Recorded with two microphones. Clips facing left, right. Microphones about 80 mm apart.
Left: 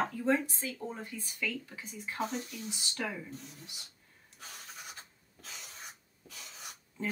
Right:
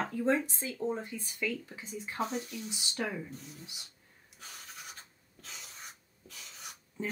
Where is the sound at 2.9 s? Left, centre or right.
Right.